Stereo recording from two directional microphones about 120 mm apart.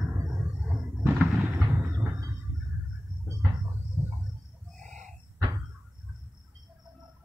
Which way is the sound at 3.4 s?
15° right (ahead or behind).